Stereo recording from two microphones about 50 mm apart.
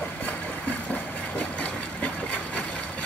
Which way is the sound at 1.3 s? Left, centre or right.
Left.